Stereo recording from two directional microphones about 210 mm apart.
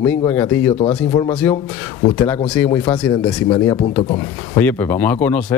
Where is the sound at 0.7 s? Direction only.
30° left (ahead or behind).